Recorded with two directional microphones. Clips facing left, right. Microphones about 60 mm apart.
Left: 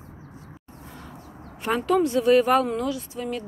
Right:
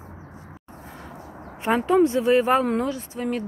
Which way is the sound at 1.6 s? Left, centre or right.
Right.